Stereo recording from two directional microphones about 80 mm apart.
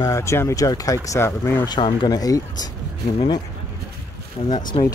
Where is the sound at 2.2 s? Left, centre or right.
Left.